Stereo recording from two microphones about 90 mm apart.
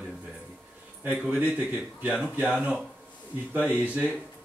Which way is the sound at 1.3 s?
15° right (ahead or behind).